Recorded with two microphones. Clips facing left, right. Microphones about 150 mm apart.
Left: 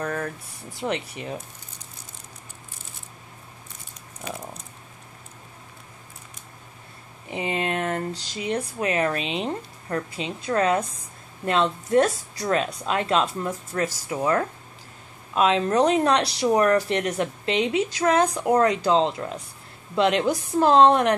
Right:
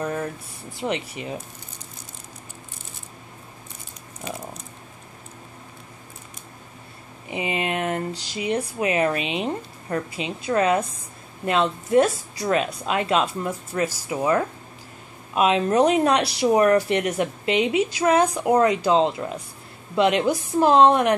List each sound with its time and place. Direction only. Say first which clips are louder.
1.0 s speech: right 1 dB; 5° right (ahead or behind)
7.2 s speech: right 1 dB; 10° right (ahead or behind)